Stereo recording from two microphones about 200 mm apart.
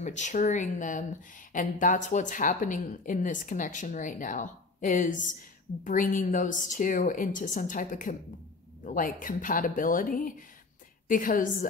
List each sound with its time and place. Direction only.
0.0 s a woman's voice: 35° left (ahead or behind)